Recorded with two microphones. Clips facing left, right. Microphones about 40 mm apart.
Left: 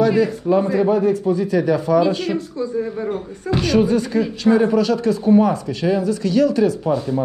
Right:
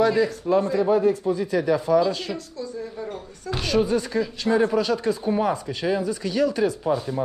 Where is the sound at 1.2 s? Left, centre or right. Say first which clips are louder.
Left 5 dB; left.